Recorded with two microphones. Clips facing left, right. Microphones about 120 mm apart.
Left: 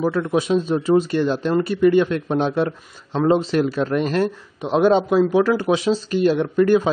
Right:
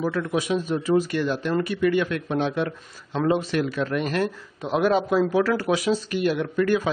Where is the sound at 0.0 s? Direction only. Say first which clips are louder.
Left 5 dB; 30° left (ahead or behind).